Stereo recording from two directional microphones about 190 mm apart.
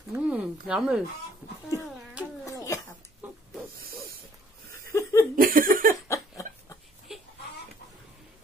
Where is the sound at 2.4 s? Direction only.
15° left (ahead or behind).